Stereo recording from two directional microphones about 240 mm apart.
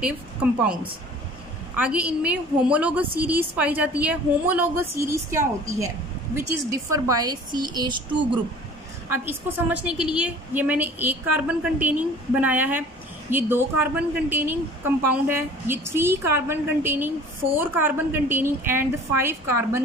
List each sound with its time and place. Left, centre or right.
0.0 s speech: centre
1.8 s a woman's voice: centre
9.1 s a woman's voice: centre